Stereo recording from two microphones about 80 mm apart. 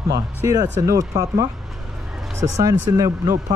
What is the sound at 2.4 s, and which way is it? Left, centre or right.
Speech, right.